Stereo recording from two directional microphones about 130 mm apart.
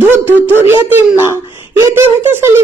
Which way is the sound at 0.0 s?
15° left (ahead or behind).